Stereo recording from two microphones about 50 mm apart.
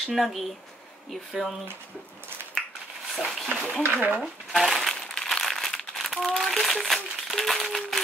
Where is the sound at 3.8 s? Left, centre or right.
Right.